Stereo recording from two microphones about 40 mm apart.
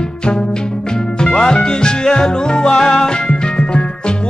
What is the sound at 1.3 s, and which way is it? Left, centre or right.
Music, left.